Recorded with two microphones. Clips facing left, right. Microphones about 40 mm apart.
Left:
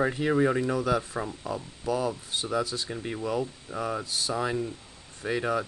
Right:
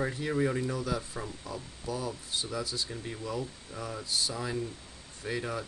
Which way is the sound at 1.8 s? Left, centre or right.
Left.